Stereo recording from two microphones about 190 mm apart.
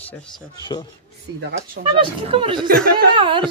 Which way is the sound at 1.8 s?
25° right (ahead or behind).